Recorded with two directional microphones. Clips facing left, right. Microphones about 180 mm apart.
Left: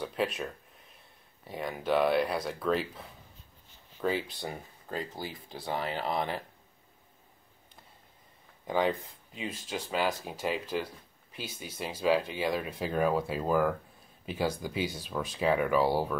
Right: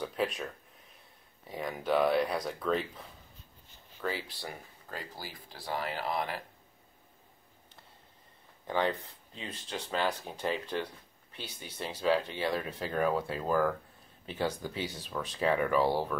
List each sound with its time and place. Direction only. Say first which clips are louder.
0.0 s speech: left 1 dB; centre (ahead or behind)
1.5 s speech: left 1 dB; centre (ahead or behind)
4.0 s speech: left 5 dB; 20° left (ahead or behind)
8.6 s speech: left 2 dB; 10° left (ahead or behind)